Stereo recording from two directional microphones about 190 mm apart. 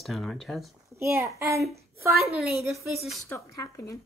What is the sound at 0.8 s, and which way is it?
Speech, 15° right (ahead or behind).